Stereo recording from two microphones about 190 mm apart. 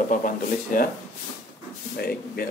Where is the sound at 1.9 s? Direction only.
55° left (ahead or behind).